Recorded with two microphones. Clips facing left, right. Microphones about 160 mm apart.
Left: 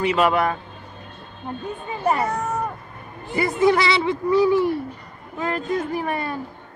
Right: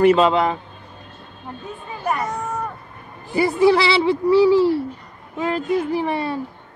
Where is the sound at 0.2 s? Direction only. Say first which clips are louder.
Right 2 dB; 20° right (ahead or behind).